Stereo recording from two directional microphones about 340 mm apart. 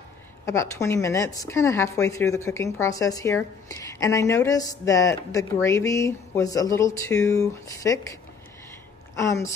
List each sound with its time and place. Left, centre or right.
0.5 s a woman's voice: centre